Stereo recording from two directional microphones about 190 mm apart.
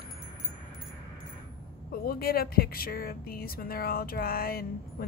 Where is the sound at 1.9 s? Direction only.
50° left (ahead or behind).